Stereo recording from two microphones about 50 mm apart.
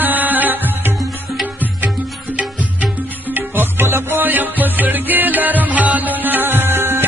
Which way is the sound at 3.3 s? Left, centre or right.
Right.